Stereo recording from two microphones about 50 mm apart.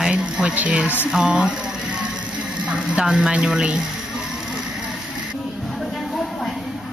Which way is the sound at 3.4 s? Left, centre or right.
Centre.